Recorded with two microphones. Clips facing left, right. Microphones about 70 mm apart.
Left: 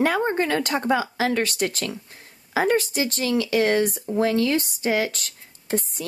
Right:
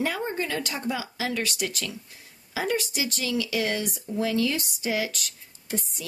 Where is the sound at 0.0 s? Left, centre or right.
Left.